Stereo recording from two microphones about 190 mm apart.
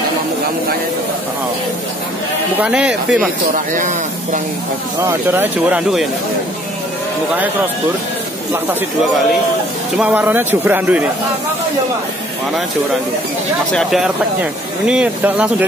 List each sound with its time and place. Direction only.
2.6 s speech: 5° right (ahead or behind)
3.5 s speech: 45° right (ahead or behind)
5.0 s speech: 10° right (ahead or behind)
9.9 s speech: 5° right (ahead or behind)
13.7 s speech: centre (ahead or behind)